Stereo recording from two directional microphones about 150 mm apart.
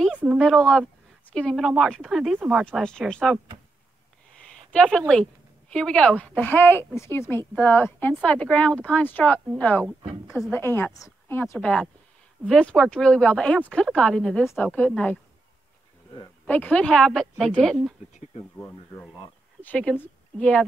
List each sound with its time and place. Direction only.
0.4 s speech: 5° left (ahead or behind)
2.6 s speech: 5° left (ahead or behind)
4.7 s a woman's voice: 5° left (ahead or behind)
10.2 s speech: centre (ahead or behind)
10.5 s a woman's voice: 15° left (ahead or behind)
16.4 s speech: 10° left (ahead or behind)
18.6 s a woman's voice: 15° left (ahead or behind)